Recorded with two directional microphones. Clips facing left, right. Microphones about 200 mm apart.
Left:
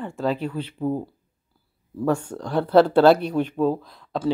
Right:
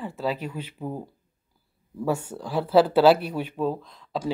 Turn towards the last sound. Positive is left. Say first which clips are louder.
# left 5 dB
turn(degrees=5)  # may be behind; listen again after turning